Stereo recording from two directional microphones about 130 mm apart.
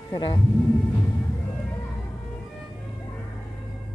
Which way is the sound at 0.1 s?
40° left (ahead or behind).